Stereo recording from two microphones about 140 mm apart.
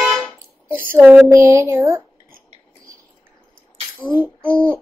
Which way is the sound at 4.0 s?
15° right (ahead or behind).